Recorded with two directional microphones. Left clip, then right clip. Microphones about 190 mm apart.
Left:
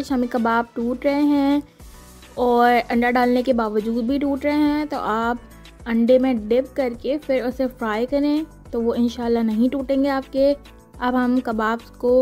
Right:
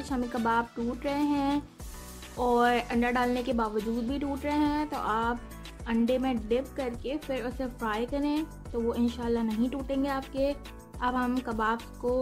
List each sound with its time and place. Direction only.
0.0 s speech: 35° left (ahead or behind)